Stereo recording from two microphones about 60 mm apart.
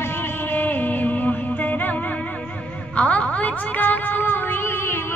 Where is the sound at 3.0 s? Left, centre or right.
Left.